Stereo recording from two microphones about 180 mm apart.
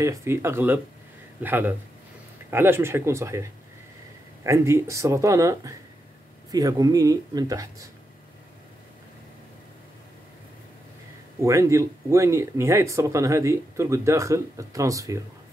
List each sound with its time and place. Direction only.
0.0 s speech: 15° right (ahead or behind)
11.4 s speech: 15° right (ahead or behind)